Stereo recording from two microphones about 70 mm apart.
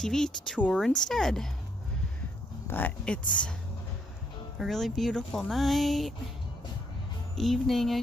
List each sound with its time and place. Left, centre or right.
0.0 s speech: centre
2.7 s speech: left
4.6 s speech: centre
7.3 s speech: centre